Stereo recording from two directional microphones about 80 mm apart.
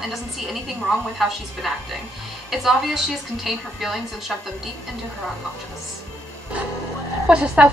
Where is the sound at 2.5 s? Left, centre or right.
Centre.